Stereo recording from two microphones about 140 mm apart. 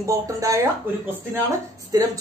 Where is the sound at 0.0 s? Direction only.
25° right (ahead or behind).